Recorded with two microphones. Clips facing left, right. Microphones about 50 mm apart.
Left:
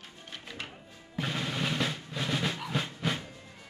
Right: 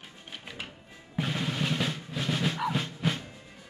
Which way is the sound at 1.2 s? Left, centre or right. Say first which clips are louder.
Right 1 dB; centre.